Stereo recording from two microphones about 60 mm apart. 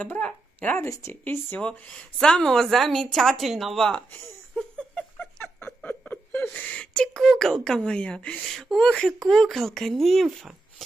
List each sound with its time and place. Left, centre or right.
0.8 s speech: left
1.2 s speech: left
1.6 s speech: centre
4.6 s a sound: centre
5.9 s chuckle: left
6.5 s speech: left
7.2 s a sound: centre
7.6 s speech: centre
8.4 s speech: centre